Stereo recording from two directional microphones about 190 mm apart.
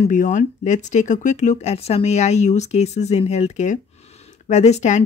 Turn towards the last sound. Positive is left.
turn(degrees=35)  # may be behind; listen again after turning